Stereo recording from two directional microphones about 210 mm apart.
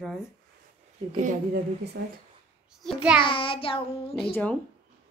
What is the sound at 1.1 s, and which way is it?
Speech, 35° right (ahead or behind).